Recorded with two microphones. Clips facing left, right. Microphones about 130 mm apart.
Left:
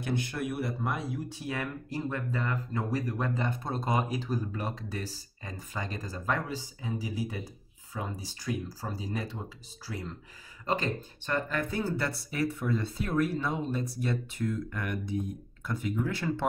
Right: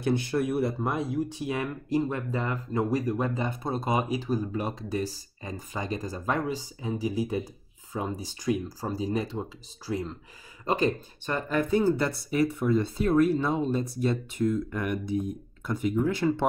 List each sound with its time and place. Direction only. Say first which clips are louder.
0.0 s speech: right 6 dB; 35° right (ahead or behind); by 16.4 s 20° right (ahead or behind)